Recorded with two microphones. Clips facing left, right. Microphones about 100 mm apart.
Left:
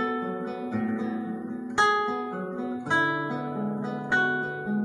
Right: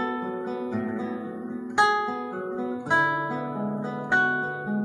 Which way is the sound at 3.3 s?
Centre (ahead or behind).